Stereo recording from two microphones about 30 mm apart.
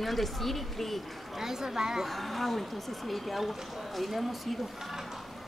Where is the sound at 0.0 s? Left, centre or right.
Centre.